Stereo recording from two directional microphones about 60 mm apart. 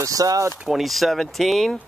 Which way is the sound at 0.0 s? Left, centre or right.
Right.